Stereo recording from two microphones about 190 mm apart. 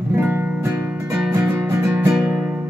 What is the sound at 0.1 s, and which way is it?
Music, 10° right (ahead or behind).